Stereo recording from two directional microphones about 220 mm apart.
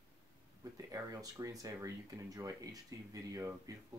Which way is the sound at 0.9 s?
15° right (ahead or behind).